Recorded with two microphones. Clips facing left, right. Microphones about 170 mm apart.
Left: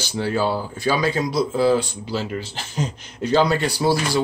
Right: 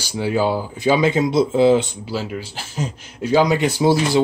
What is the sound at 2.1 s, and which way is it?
Speech, 10° right (ahead or behind).